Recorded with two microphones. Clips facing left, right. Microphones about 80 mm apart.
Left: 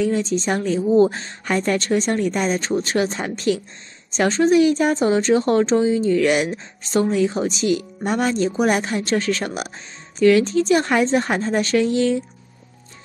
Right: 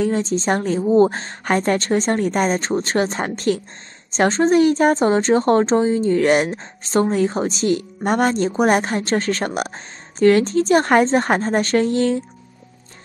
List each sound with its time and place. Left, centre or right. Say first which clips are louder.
0.0 s a woman's voice: right 1 dB; right